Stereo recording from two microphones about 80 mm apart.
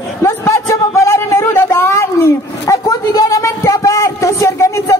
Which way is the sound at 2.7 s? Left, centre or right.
Left.